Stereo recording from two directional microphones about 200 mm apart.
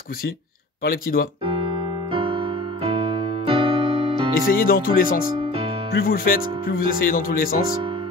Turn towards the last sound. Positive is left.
turn(degrees=45)  # may be behind; listen again after turning